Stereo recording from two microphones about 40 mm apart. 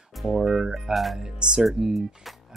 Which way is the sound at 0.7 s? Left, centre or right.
Centre.